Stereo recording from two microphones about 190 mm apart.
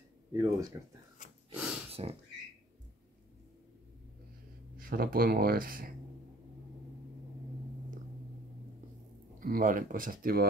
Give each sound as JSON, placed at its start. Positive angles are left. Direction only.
{"t": 0.3, "sound": "speech", "side_deg": -15}
{"t": 1.9, "sound": "a sound", "side_deg": -30}
{"t": 4.7, "sound": "speech", "side_deg": -50}
{"t": 9.4, "sound": "speech", "side_deg": -45}